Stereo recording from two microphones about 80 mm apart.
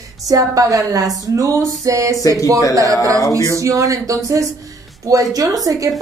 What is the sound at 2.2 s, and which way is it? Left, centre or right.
Speech, left.